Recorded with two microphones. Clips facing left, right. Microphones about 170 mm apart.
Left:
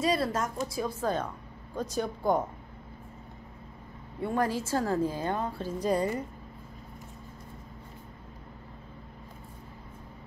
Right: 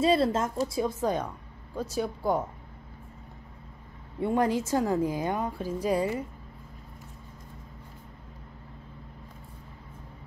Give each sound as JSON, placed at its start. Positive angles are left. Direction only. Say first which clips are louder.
{"t": 0.0, "sound": "a woman's voice", "louder": "right 4 dB", "side_deg": -25}
{"t": 4.2, "sound": "a woman's voice", "louder": "right 3 dB", "side_deg": -20}